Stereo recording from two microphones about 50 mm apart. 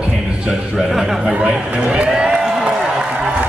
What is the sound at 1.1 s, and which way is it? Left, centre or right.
Speech, right.